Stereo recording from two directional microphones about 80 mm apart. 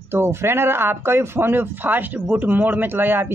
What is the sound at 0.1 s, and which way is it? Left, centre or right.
Speech, right.